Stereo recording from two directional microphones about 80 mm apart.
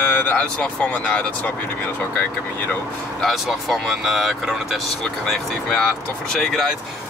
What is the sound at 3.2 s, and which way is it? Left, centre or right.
Speech, centre.